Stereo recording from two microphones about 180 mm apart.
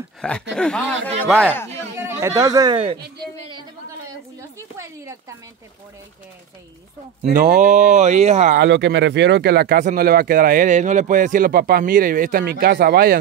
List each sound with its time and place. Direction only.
0.2 s speech: 5° left (ahead or behind)
2.0 s speech: 15° right (ahead or behind)
4.4 s a sound: 15° right (ahead or behind)
7.3 s speech: 45° right (ahead or behind)
8.5 s speech: 75° right (ahead or behind); by 13.2 s 55° right (ahead or behind)